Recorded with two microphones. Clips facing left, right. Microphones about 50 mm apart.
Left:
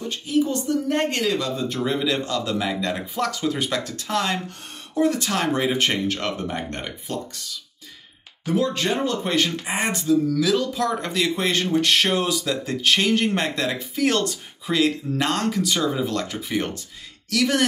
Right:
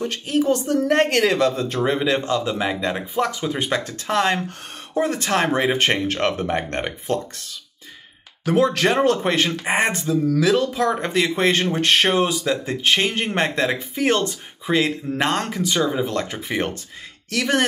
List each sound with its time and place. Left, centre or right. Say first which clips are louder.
0.0 s speech: right 2 dB; right
2.0 s speech: right 3 dB; right
3.5 s speech: right 2 dB; right
8.5 s speech: right 5 dB; right
9.3 s speech: right 3 dB; right